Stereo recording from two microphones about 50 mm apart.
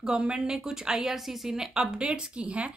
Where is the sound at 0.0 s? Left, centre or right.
Centre.